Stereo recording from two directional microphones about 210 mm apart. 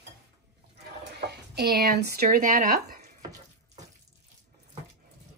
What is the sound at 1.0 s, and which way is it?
Speech, 50° right (ahead or behind).